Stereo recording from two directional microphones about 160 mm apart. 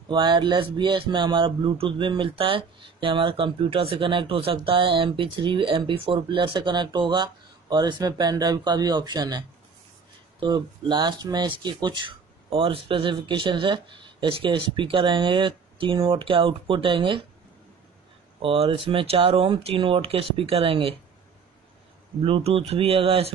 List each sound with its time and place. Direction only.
0.1 s a man's voice: 30° right (ahead or behind)
10.4 s a man's voice: 30° right (ahead or behind)
18.4 s a man's voice: 35° right (ahead or behind)
22.2 s a man's voice: 35° right (ahead or behind)